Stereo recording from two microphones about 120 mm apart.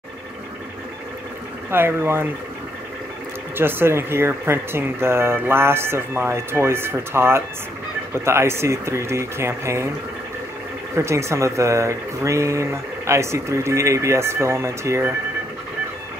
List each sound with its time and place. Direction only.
1.7 s speech: 20° right (ahead or behind)
3.5 s speech: 20° right (ahead or behind)
11.0 s speech: 25° right (ahead or behind)